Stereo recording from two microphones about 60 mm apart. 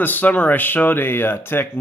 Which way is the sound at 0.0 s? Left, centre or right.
Left.